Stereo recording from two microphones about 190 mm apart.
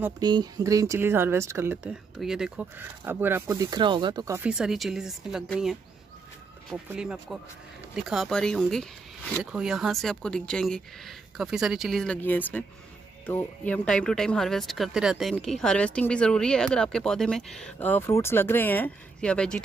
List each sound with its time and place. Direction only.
0.2 s speech: 20° right (ahead or behind)
4.4 s speech: 5° right (ahead or behind)
7.0 s speech: 5° right (ahead or behind)